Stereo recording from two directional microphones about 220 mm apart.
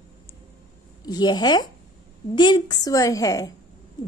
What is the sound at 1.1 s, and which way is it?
A woman's voice, 20° left (ahead or behind).